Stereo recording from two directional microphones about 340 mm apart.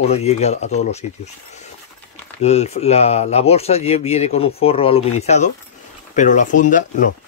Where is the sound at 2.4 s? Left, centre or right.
Centre.